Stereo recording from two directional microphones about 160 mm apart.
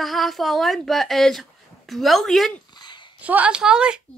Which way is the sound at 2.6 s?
25° left (ahead or behind).